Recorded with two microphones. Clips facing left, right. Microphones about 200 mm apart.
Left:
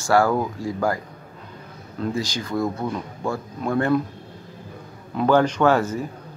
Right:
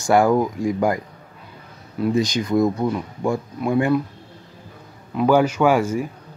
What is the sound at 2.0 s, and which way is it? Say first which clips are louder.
Speech: right 6 dB; 20° right (ahead or behind).